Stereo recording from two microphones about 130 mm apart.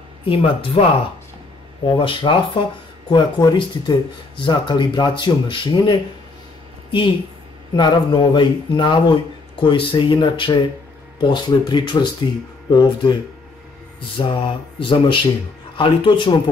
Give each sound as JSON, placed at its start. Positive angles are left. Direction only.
{"t": 0.2, "sound": "speech", "side_deg": 45}